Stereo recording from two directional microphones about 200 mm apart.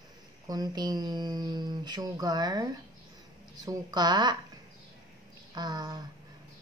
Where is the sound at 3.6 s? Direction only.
20° right (ahead or behind).